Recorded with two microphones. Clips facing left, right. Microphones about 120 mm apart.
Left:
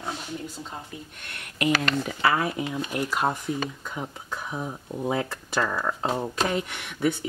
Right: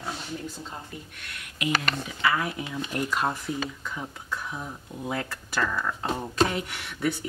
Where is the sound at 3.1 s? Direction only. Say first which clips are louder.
Left 3 dB; 15° left (ahead or behind).